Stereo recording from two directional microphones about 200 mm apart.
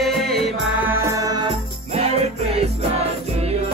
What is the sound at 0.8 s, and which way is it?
Music, 15° right (ahead or behind).